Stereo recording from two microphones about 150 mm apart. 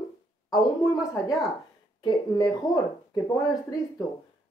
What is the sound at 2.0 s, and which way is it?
A woman's voice, 30° left (ahead or behind).